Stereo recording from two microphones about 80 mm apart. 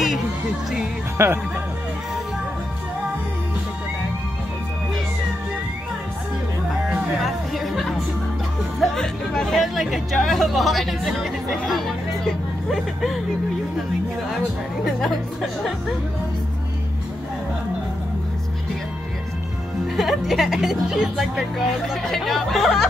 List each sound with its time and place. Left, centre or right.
0.0 s music: centre
1.1 s speech: right
7.2 s music: centre
8.9 s speech: centre
12.6 s speech: centre
15.0 s speech: centre
20.0 s speech: centre